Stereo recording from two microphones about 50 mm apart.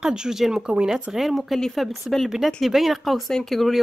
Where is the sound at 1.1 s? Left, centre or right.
Centre.